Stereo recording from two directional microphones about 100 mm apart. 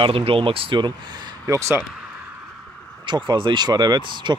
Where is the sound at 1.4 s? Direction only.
30° right (ahead or behind).